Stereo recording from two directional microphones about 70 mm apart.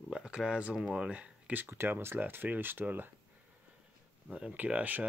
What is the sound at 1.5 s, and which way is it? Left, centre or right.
Speech, right.